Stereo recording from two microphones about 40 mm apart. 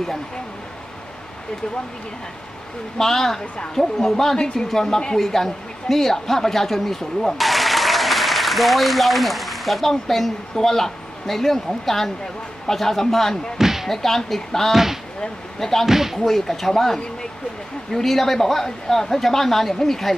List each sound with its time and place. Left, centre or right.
3.0 s a woman's voice: centre
13.6 s slam: centre
13.8 s a woman's voice: centre
14.7 s speech: centre
16.3 s a woman's voice: centre